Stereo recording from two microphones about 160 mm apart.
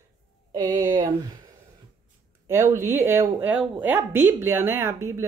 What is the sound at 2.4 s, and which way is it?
A woman's voice, 15° right (ahead or behind).